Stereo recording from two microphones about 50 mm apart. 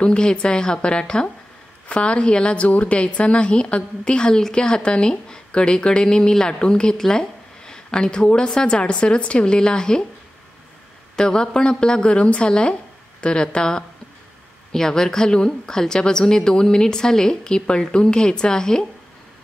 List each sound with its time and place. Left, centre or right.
0.0 s a woman's voice: centre
11.1 s a woman's voice: centre